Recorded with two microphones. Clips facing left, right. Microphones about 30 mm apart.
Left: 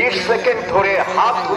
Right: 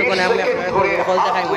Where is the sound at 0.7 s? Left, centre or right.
Centre.